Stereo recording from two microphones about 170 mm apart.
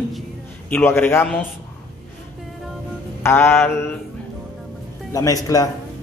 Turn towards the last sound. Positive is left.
turn(degrees=20)  # may be behind; listen again after turning